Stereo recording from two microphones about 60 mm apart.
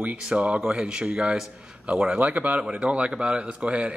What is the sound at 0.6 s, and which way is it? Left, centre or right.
A man's voice, centre.